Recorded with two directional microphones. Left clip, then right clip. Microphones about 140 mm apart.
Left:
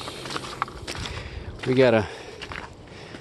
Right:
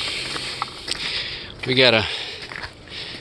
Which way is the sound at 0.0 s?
10° left (ahead or behind).